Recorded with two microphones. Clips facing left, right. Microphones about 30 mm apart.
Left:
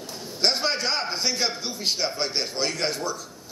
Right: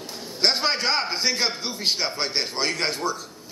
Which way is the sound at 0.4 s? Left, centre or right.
Centre.